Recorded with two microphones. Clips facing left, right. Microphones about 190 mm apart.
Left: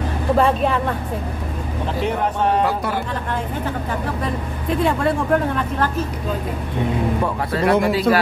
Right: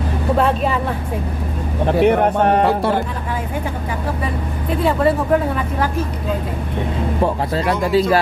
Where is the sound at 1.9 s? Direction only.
60° right (ahead or behind).